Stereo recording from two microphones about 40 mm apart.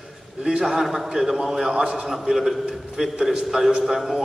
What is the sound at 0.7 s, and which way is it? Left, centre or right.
Speech, centre.